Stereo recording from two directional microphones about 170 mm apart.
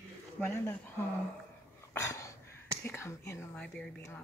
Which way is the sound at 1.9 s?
15° left (ahead or behind).